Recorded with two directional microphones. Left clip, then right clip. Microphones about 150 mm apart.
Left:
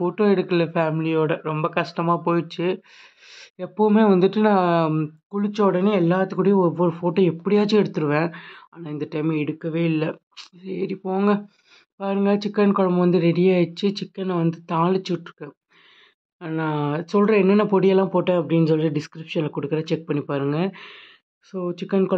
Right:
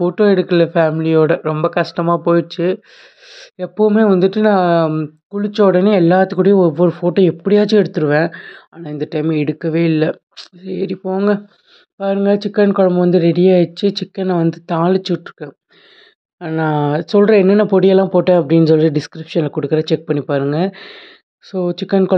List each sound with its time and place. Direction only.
0.0 s speech: 25° right (ahead or behind)
4.9 s speech: 10° right (ahead or behind)
5.7 s speech: 35° right (ahead or behind)